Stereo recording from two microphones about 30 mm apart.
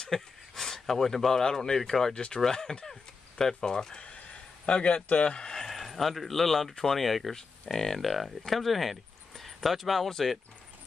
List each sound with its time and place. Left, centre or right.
0.1 s speech: centre
2.1 s speech: left
2.4 s speech: centre
4.0 s a sound: left
5.2 s speech: left
5.7 s speech: centre
7.3 s speech: centre
8.0 s speech: centre